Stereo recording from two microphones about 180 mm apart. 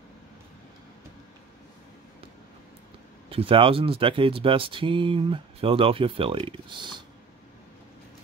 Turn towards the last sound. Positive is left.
turn(degrees=-25)  # may be behind; listen again after turning